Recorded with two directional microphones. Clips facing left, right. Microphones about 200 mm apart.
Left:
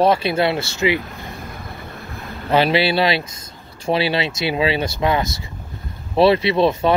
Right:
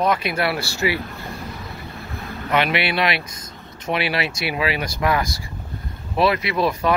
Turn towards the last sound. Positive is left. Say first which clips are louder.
# left 4 dB
turn(degrees=25)  # may be behind; listen again after turning